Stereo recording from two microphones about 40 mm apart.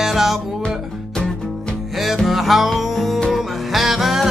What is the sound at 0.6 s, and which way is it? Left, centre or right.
Music, left.